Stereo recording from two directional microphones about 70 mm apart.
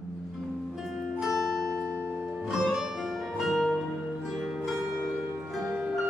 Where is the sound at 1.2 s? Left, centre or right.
Centre.